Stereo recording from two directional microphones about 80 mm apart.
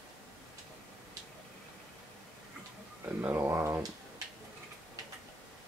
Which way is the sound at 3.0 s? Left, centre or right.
Right.